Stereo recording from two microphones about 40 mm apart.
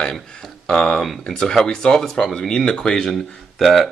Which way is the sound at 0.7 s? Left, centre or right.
Centre.